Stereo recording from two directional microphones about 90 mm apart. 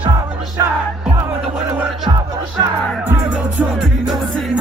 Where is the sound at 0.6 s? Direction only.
40° right (ahead or behind).